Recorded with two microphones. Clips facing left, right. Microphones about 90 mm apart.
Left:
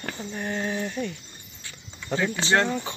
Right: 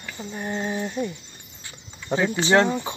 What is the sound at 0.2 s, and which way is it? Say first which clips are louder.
Speech: right 2 dB; 10° right (ahead or behind).